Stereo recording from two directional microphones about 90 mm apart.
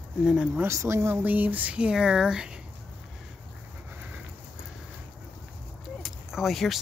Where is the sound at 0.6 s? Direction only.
30° right (ahead or behind); by 2.6 s 10° right (ahead or behind).